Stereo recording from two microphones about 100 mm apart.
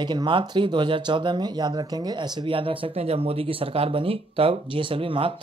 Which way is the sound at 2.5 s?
60° right (ahead or behind).